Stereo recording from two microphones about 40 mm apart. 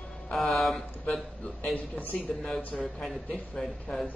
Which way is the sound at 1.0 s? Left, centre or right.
Left.